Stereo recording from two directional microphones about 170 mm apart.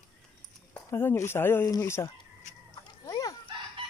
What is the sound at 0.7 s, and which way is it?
Speech, 15° left (ahead or behind).